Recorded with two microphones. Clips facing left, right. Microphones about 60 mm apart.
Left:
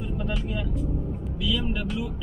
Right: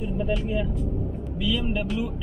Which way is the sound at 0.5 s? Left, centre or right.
Centre.